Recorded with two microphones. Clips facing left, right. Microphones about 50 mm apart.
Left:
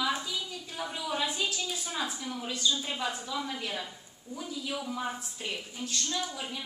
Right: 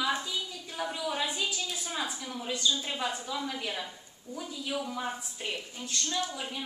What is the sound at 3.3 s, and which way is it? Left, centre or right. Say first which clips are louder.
Speech: even; centre.